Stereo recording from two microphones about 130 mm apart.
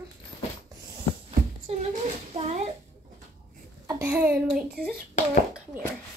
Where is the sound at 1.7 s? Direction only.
55° right (ahead or behind).